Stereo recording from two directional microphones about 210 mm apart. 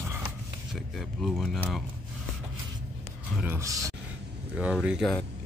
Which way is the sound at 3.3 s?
10° right (ahead or behind).